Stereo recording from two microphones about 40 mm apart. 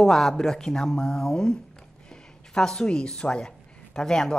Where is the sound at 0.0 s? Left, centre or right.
Centre.